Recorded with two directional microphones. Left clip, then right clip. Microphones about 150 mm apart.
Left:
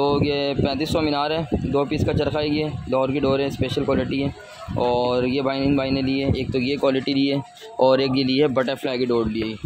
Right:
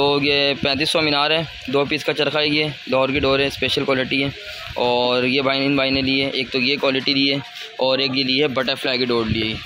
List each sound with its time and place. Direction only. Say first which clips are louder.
0.0 s speech: right 4 dB; 5° left (ahead or behind)
6.5 s speech: right 1 dB; 20° left (ahead or behind)
7.8 s speech: left 1 dB; 35° left (ahead or behind)
8.5 s speech: right 1 dB; 20° left (ahead or behind)
8.9 s speech: right 2 dB; 10° left (ahead or behind)